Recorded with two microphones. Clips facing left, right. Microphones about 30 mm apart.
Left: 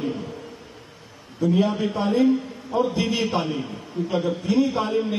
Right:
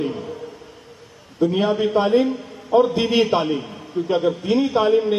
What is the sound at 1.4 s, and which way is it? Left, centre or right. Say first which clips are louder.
A man's voice: right 3 dB; right.